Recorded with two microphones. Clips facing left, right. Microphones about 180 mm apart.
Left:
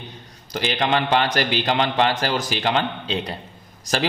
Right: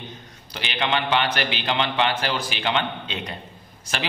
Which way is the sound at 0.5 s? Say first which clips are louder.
Left 4 dB; 40° left (ahead or behind).